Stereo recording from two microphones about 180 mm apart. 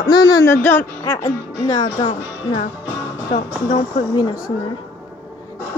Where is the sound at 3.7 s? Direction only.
25° left (ahead or behind).